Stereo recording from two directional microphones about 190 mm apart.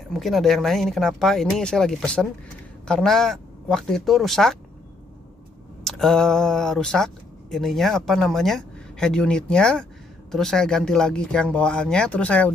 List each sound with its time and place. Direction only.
0.1 s speech: centre (ahead or behind)
5.9 s speech: centre (ahead or behind)